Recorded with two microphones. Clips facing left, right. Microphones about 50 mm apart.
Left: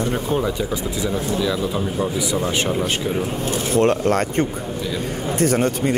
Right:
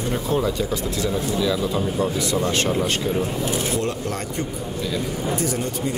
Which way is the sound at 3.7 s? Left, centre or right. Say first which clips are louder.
Left 8 dB; left.